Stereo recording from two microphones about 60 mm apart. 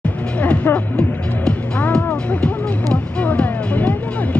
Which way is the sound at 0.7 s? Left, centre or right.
Left.